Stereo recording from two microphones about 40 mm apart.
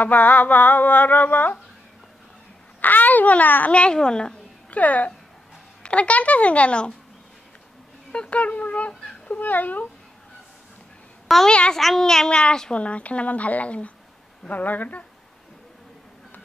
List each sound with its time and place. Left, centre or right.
0.0 s a sound: left
2.8 s a sound: left
3.7 s a child's voice: left
4.6 s a woman's voice: left
5.8 s speech: left
8.1 s speech: left
8.4 s speech: left
9.4 s a sound: left
11.4 s a child's voice: left
11.7 s speech: centre
12.3 s a child's voice: left
12.7 s speech: left
14.5 s a sound: left